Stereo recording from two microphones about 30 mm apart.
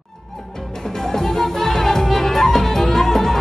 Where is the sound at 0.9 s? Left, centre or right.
Centre.